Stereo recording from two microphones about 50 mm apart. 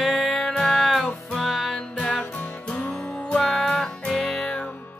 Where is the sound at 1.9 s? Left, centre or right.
Left.